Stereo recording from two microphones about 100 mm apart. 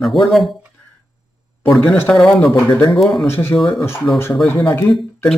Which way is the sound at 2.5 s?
25° left (ahead or behind).